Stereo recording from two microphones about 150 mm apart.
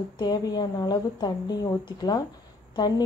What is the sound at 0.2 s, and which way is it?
A woman's voice, 25° left (ahead or behind).